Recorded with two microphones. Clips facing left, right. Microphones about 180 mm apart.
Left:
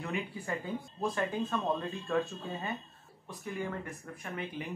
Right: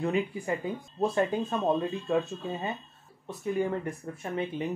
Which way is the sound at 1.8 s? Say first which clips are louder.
Right 5 dB; 20° right (ahead or behind).